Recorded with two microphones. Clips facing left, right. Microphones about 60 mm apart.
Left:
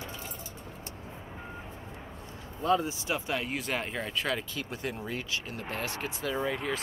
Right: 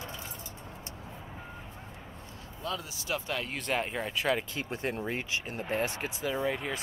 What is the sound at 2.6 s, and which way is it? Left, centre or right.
Speech, left.